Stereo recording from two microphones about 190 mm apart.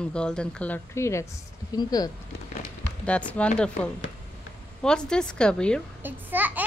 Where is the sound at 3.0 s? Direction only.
5° left (ahead or behind).